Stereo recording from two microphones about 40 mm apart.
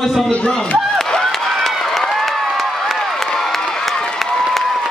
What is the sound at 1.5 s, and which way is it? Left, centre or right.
Run, centre.